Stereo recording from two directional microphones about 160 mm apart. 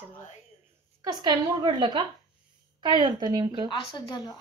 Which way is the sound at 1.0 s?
25° right (ahead or behind).